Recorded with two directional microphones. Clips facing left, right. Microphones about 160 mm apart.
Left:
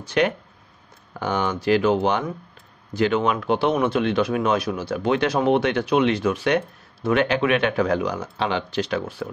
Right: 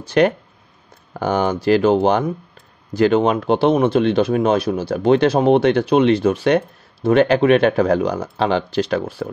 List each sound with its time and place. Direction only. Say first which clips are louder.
0.0 s speech: right 6 dB; 35° right (ahead or behind)